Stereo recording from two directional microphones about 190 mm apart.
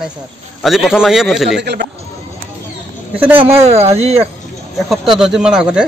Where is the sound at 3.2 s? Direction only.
10° right (ahead or behind).